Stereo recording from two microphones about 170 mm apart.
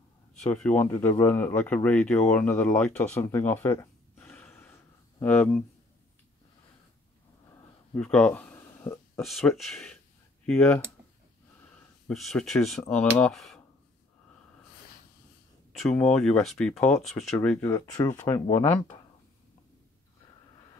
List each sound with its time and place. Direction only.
0.3 s speech: 5° left (ahead or behind)
7.9 s a sound: 5° left (ahead or behind)
9.2 s speech: centre (ahead or behind)
12.1 s speech: centre (ahead or behind)
15.9 s speech: 5° left (ahead or behind)